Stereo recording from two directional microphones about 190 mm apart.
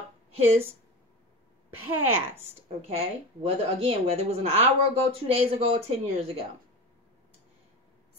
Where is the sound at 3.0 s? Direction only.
30° right (ahead or behind).